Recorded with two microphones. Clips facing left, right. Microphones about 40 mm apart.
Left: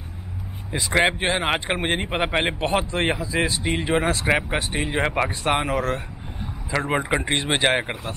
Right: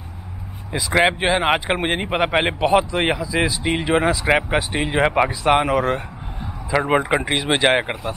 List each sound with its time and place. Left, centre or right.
0.7 s a man's voice: centre